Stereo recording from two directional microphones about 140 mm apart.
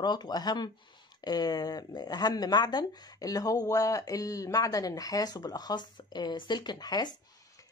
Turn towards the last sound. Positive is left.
turn(degrees=30)  # may be behind; listen again after turning